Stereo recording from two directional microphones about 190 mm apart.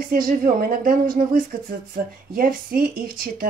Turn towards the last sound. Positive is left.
turn(degrees=-50)  # may be behind; listen again after turning